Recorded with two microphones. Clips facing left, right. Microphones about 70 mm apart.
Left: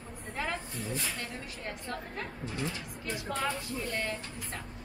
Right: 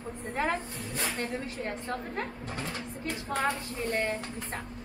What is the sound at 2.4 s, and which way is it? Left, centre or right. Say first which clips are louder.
Speech: even; right.